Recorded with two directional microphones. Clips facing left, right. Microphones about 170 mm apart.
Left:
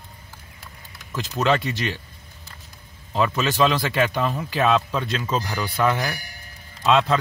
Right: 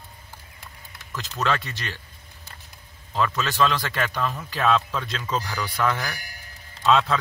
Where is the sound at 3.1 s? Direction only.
10° left (ahead or behind).